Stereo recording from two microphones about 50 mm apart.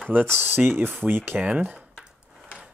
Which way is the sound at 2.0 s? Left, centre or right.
Centre.